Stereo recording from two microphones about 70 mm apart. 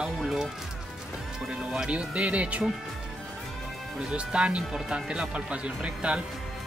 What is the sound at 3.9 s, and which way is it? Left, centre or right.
Speech, centre.